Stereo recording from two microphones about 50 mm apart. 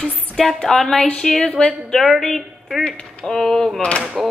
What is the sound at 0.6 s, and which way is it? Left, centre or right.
Speech, centre.